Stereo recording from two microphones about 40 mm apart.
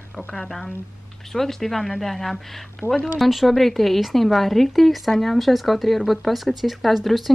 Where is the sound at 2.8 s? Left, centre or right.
Left.